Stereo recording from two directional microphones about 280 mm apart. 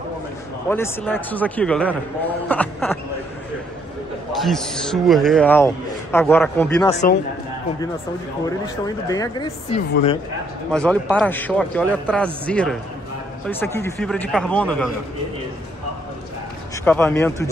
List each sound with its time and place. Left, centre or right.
0.7 s a man's voice: centre
4.4 s a man's voice: centre
6.9 s speech: left
8.6 s speech: centre
10.7 s a man's voice: centre
13.7 s a man's voice: centre
16.8 s speech: centre